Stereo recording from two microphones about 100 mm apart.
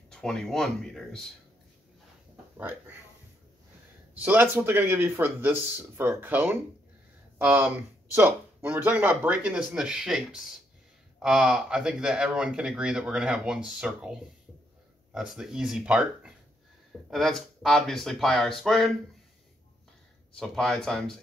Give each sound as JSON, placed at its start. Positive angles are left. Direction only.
{"t": 0.1, "sound": "speech", "side_deg": 5}
{"t": 2.5, "sound": "speech", "side_deg": -20}
{"t": 4.1, "sound": "speech", "side_deg": -15}
{"t": 8.1, "sound": "speech", "side_deg": -25}
{"t": 8.6, "sound": "speech", "side_deg": -15}
{"t": 17.1, "sound": "speech", "side_deg": 0}
{"t": 20.3, "sound": "speech", "side_deg": 5}